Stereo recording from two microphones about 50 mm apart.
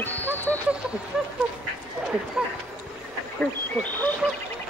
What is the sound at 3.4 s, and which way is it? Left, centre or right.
Duck, left.